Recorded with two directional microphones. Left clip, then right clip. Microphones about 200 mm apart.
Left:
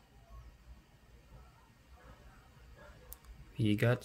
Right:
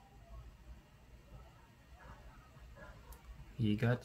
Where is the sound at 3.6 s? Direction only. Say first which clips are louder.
Left 5 dB; 30° left (ahead or behind).